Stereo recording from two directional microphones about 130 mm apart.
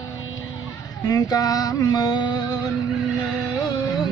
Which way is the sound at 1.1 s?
25° left (ahead or behind).